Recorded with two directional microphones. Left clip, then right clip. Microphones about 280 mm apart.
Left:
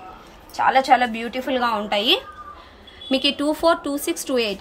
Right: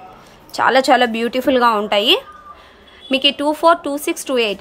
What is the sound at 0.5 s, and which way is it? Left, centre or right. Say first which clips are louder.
Speech: right 3 dB; right.